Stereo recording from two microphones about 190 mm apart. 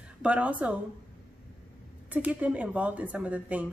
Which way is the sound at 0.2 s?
5° right (ahead or behind).